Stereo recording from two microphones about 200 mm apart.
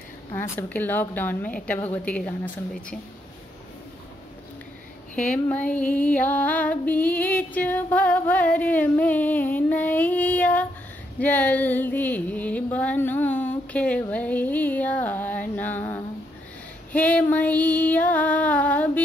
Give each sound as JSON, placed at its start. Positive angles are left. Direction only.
{"t": 0.3, "sound": "female singing", "side_deg": 10}
{"t": 5.1, "sound": "female singing", "side_deg": 5}